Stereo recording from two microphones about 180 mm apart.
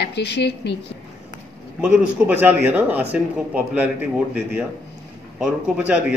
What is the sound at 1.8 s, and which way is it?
Speech, 10° right (ahead or behind).